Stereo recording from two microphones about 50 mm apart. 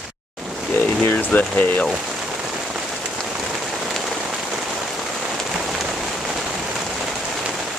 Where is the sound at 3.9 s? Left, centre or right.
Centre.